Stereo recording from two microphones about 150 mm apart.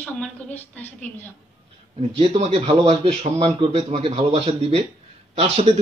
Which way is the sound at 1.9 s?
45° right (ahead or behind).